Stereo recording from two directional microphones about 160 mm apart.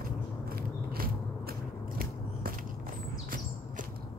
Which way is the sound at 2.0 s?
60° right (ahead or behind).